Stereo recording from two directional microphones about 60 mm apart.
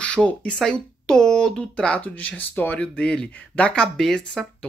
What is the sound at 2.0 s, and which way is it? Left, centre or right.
Speech, left.